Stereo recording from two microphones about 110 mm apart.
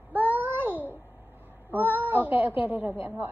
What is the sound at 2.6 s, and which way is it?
Speech, 15° right (ahead or behind).